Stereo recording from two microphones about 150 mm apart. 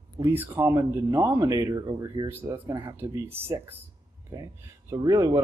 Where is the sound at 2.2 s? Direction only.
15° right (ahead or behind).